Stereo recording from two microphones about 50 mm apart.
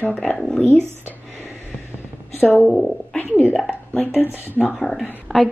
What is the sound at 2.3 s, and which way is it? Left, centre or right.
Speech, left.